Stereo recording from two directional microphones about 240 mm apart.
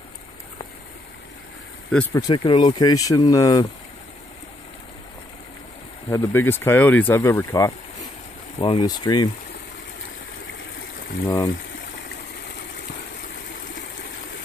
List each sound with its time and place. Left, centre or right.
2.1 s speech: centre
6.0 s speech: centre
11.2 s speech: centre